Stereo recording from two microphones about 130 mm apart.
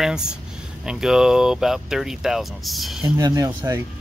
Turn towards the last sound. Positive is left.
turn(degrees=-25)  # may be behind; listen again after turning